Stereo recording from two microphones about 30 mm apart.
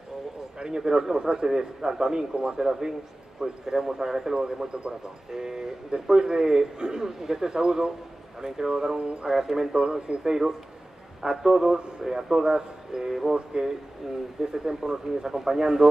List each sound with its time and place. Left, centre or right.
0.6 s a man's voice: right
8.9 s speech: right
9.3 s a man's voice: centre
9.8 s a man's voice: right
14.0 s a man's voice: centre